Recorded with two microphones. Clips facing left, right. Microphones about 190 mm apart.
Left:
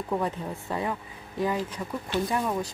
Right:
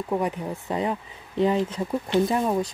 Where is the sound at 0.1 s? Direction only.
15° right (ahead or behind).